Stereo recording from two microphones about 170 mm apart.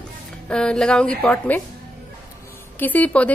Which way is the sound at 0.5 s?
5° left (ahead or behind).